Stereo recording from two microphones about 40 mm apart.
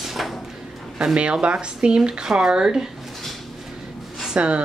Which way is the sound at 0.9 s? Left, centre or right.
Right.